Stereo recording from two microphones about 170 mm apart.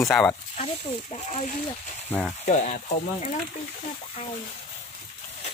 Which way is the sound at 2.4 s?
45° left (ahead or behind).